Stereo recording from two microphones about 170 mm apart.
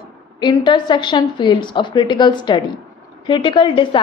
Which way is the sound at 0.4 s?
25° left (ahead or behind).